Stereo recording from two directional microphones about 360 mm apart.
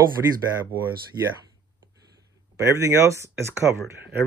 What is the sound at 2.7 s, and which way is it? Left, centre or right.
Speech, centre.